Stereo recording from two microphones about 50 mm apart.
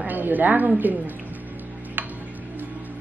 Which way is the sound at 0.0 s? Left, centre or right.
Right.